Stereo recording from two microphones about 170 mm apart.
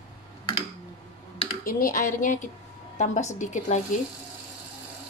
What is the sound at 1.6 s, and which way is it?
A woman's voice, 55° left (ahead or behind).